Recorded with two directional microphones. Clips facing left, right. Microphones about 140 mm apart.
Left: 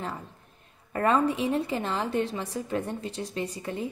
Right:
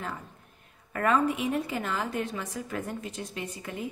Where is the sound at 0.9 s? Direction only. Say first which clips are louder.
Left 2 dB; 30° left (ahead or behind).